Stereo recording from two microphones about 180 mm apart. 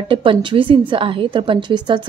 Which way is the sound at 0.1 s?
25° right (ahead or behind).